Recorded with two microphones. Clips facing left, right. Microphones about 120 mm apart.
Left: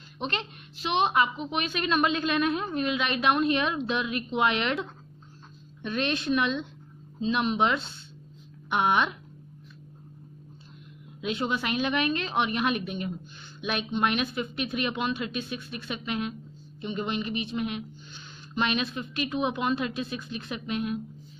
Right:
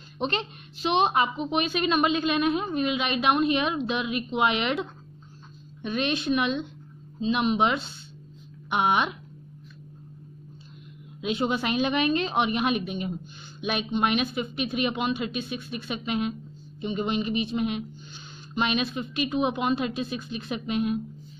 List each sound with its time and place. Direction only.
0.2 s a woman's voice: 25° right (ahead or behind)
11.1 s a woman's voice: 20° right (ahead or behind)